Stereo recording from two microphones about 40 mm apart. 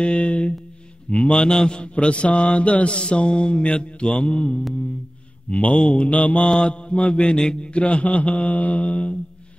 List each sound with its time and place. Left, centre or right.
0.0 s music: left
1.3 s mantra: centre; by 6.5 s left
6.5 s mantra: left
7.3 s a man's voice: centre
7.6 s mantra: left